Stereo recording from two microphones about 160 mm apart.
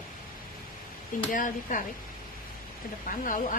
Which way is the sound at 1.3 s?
55° left (ahead or behind).